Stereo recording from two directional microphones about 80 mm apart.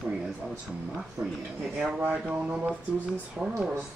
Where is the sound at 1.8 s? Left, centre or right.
Centre.